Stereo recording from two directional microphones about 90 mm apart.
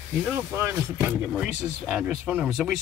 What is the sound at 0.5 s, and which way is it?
Speech, 20° right (ahead or behind).